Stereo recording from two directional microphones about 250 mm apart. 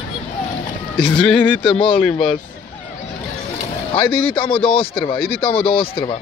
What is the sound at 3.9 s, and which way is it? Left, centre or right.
Speech, left.